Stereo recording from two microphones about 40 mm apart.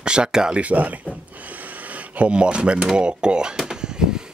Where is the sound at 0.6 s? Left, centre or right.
Right.